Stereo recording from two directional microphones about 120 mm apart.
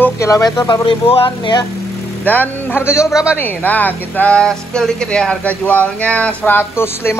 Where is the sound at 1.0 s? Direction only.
50° left (ahead or behind).